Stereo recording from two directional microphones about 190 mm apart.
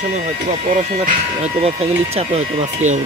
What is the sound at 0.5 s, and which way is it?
Speech, 40° right (ahead or behind).